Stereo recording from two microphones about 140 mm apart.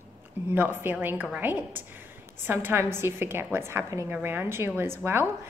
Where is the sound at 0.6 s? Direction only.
15° right (ahead or behind).